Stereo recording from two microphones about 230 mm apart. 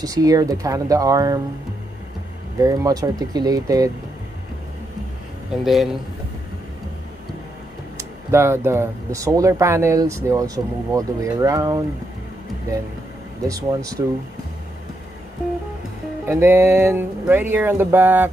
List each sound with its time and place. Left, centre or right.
0.0 s speech: centre
2.6 s speech: centre
5.5 s speech: centre
8.3 s speech: centre
13.5 s speech: centre
16.3 s speech: centre